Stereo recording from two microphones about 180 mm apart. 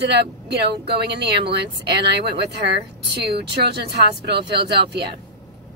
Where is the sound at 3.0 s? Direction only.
65° right (ahead or behind).